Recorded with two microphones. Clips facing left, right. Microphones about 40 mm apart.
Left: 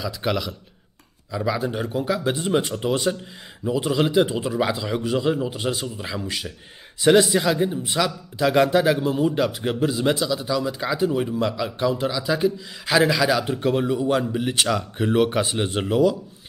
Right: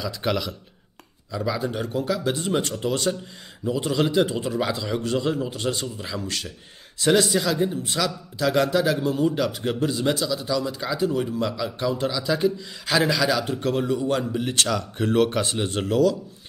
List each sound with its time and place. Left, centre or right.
0.0 s a man's voice: centre